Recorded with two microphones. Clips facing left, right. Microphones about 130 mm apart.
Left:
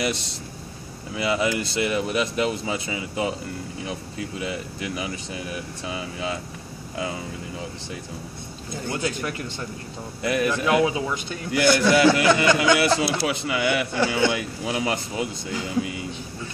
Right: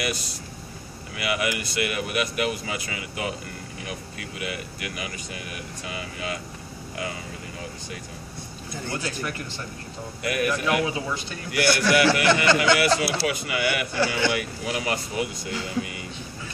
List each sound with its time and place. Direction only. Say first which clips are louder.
0.0 s a man's voice: left 3 dB; 25° left (ahead or behind)
10.2 s a man's voice: left 2 dB; 30° left (ahead or behind)